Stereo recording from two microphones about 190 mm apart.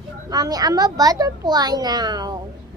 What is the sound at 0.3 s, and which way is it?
A woman's voice, 20° right (ahead or behind).